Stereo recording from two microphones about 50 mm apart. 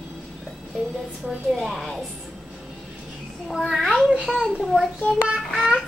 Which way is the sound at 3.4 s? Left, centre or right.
Centre.